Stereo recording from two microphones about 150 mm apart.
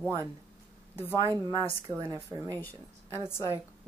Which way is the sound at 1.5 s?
25° right (ahead or behind).